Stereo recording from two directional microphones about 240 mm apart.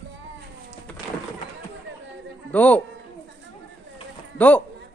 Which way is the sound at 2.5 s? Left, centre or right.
Centre.